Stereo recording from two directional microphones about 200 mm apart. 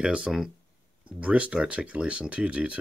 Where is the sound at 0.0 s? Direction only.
5° right (ahead or behind).